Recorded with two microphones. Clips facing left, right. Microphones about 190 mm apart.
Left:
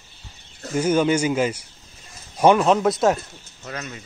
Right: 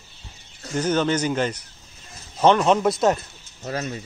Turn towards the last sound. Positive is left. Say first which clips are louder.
# right 5 dB
turn(degrees=-35)  # may be behind; listen again after turning